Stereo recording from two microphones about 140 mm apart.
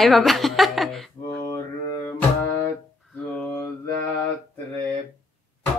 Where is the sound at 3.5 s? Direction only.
20° left (ahead or behind).